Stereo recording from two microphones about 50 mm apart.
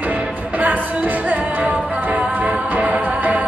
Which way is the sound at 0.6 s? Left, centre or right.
Right.